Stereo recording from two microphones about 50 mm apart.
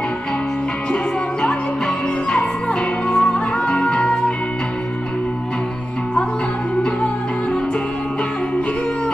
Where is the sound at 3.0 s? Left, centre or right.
Centre.